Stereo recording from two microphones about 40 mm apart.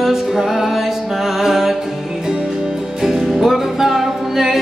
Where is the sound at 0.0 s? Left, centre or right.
Centre.